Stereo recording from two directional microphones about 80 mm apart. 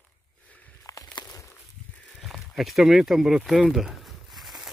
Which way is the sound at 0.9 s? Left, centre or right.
Left.